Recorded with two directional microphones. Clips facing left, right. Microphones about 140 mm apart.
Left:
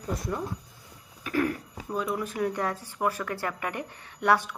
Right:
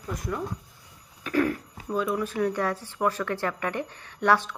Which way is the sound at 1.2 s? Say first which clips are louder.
Right 2 dB; 15° left (ahead or behind).